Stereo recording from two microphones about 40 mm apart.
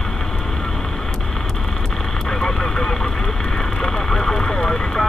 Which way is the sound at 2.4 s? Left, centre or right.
Centre.